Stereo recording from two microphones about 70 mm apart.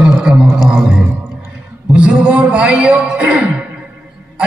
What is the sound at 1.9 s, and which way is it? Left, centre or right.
A man's voice, centre.